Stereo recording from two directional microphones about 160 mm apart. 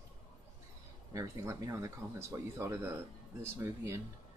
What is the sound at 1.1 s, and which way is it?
Speech, 20° right (ahead or behind).